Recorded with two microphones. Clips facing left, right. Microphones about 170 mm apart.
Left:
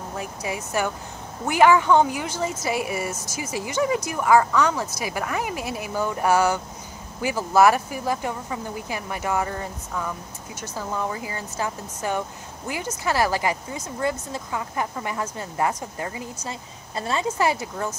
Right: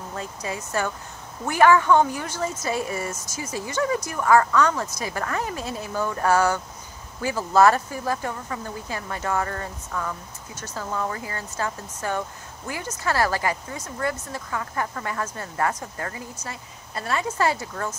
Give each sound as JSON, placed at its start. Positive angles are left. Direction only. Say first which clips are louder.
{"t": 0.1, "sound": "speech", "louder": "left 1 dB", "side_deg": 10}